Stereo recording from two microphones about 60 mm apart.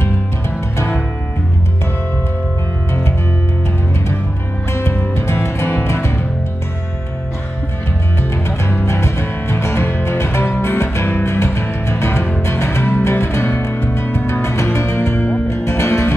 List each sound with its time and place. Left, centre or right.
4.7 s music: left
8.2 s music: left
14.4 s music: left
15.0 s music: left
15.5 s music: left